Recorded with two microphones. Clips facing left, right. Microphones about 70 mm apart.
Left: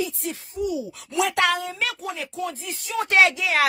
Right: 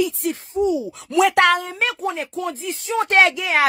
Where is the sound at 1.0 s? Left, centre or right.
Right.